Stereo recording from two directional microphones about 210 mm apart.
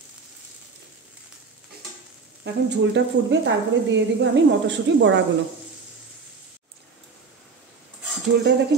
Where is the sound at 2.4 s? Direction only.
55° right (ahead or behind).